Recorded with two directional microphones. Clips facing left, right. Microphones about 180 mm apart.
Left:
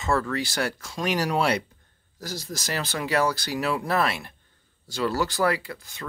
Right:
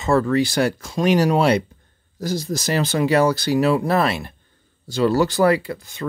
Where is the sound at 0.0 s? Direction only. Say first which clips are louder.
Right 8 dB; 20° right (ahead or behind).